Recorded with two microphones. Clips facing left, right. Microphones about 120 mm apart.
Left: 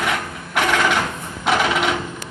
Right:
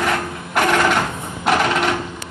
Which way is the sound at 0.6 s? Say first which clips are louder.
Right 2 dB; 10° right (ahead or behind).